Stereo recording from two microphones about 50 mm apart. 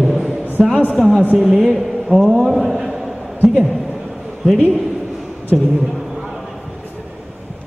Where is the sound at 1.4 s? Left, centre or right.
Centre.